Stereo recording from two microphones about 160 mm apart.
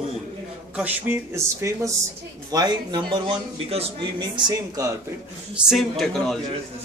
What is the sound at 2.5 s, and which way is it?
Speech, 25° right (ahead or behind).